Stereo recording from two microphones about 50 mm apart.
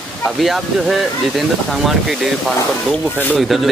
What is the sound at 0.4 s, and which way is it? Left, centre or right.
Speech, centre.